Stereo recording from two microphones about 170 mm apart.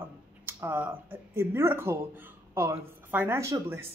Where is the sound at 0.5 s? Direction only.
10° right (ahead or behind).